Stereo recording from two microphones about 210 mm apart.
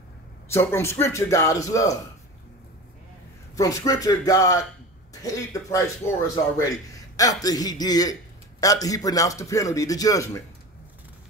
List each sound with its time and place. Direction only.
0.5 s a man's voice: 10° left (ahead or behind)
3.5 s a man's voice: 15° left (ahead or behind)